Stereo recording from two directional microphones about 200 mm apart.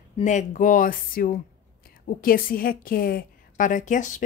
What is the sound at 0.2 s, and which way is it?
Speech, 35° left (ahead or behind).